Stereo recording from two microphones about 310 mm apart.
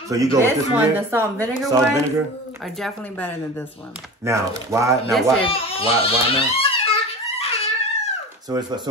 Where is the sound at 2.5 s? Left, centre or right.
Centre.